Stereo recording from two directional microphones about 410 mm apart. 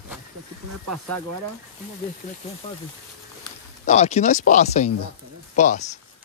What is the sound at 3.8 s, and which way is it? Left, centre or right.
Speech, centre.